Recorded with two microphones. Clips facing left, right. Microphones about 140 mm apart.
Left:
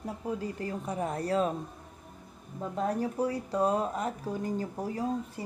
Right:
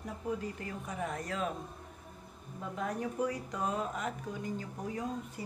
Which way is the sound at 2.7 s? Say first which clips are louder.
Left 6 dB; 35° left (ahead or behind).